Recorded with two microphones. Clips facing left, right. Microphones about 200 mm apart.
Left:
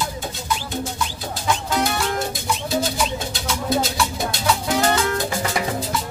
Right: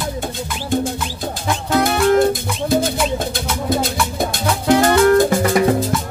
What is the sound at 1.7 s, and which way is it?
Music, 55° right (ahead or behind).